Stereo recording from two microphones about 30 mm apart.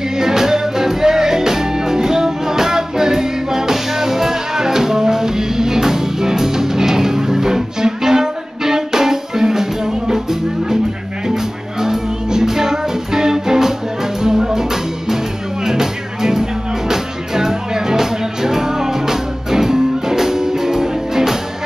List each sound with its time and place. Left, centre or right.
0.2 s music: centre
11.8 s music: centre